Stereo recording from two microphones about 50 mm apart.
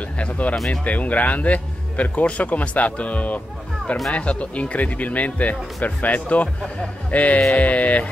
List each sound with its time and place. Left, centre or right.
0.2 s speech: left